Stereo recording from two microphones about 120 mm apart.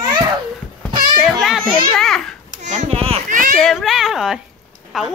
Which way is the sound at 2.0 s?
5° left (ahead or behind).